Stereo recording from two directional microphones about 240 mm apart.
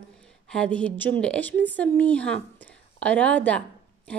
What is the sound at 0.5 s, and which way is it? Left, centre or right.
A woman's voice, centre.